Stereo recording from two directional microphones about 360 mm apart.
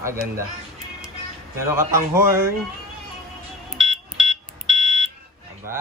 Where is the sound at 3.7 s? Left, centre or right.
Centre.